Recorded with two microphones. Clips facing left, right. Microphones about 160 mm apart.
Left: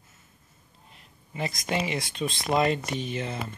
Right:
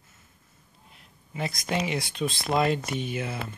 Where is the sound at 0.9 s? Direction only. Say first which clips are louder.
Even; centre (ahead or behind).